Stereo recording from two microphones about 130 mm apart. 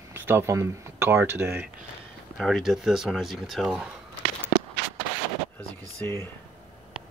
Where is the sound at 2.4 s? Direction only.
Centre (ahead or behind).